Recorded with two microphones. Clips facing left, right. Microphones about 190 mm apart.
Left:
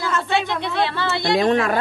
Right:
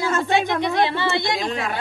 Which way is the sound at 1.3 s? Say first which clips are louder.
Left 7 dB; 60° left (ahead or behind).